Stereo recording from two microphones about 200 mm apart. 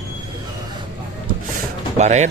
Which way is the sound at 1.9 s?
35° right (ahead or behind).